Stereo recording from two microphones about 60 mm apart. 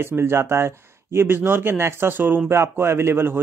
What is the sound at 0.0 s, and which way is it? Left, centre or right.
Speech, right.